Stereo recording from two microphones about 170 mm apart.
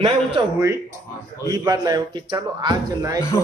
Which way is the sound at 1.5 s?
20° right (ahead or behind).